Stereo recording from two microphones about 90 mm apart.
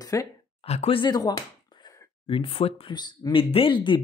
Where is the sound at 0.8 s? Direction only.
80° left.